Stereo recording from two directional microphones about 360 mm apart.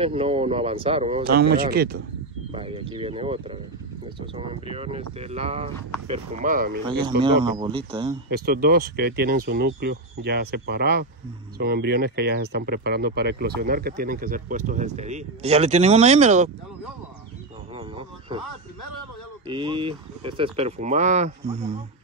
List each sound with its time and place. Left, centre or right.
0.0 s speech: centre
2.5 s speech: centre
6.9 s speech: centre
8.3 s speech: right
17.7 s a sound: centre
19.4 s speech: centre